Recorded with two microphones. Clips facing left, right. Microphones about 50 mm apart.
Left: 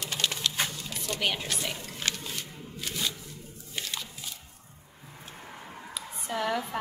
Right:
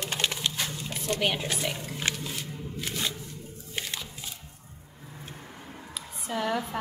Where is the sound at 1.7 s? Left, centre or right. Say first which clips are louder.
Right 2 dB; centre.